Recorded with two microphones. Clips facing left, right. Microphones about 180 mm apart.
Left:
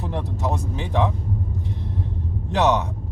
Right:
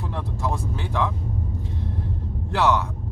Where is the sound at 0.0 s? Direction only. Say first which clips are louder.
Left 2 dB; 20° left (ahead or behind).